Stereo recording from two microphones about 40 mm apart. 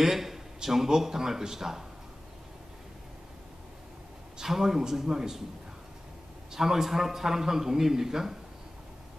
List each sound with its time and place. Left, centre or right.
0.0 s a man's voice: centre
4.4 s a man's voice: centre
6.5 s a man's voice: centre